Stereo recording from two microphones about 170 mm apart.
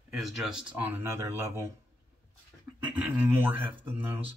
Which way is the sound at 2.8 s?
10° right (ahead or behind).